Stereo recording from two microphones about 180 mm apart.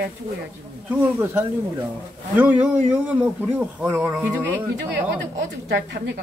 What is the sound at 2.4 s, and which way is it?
A man's voice, 10° right (ahead or behind).